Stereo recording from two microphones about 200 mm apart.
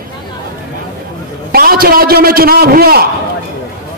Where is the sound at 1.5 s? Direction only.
45° right (ahead or behind).